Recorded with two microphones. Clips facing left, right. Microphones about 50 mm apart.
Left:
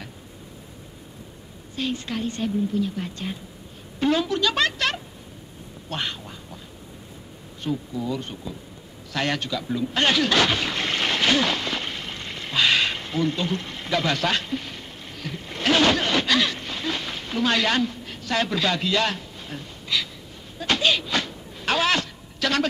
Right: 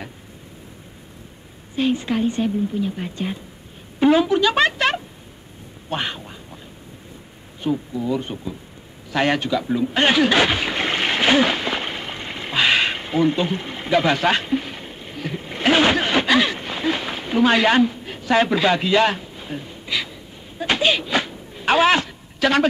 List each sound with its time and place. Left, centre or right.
1.8 s speech: centre
7.6 s speech: centre
9.1 s a sound: centre